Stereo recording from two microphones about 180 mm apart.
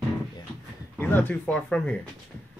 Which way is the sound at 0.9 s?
10° left (ahead or behind).